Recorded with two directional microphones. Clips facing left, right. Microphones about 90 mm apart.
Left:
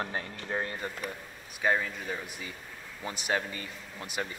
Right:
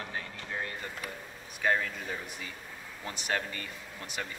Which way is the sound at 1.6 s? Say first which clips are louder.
Left 1 dB; 10° left (ahead or behind).